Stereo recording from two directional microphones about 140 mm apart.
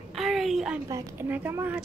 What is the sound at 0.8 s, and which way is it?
Speech, 20° right (ahead or behind).